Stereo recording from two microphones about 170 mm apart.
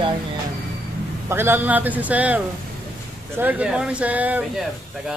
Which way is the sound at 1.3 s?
15° right (ahead or behind).